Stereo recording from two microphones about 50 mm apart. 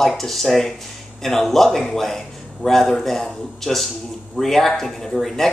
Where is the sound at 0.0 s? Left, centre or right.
Centre.